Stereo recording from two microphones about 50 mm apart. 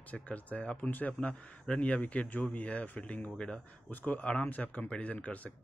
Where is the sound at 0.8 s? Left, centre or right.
Left.